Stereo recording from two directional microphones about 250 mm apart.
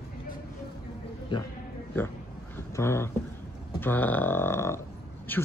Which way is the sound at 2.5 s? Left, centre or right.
Centre.